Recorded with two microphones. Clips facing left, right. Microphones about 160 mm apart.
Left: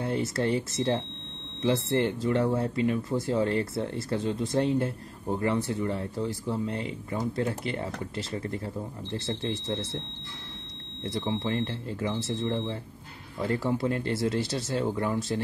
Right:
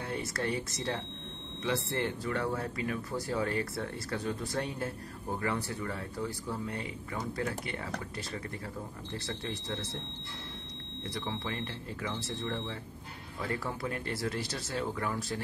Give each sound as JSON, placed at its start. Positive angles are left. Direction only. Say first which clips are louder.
{"t": 0.0, "sound": "speech", "louder": "left 7 dB", "side_deg": 30}
{"t": 9.1, "sound": "speech", "louder": "left 7 dB", "side_deg": 25}
{"t": 11.1, "sound": "speech", "louder": "left 8 dB", "side_deg": 25}